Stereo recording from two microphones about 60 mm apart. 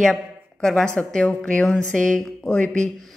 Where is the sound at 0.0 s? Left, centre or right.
Centre.